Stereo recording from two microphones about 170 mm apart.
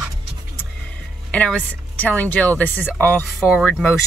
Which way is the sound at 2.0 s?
10° left (ahead or behind).